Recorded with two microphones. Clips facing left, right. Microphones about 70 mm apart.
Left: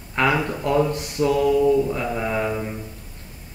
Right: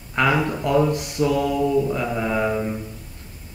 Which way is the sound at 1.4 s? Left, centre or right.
Centre.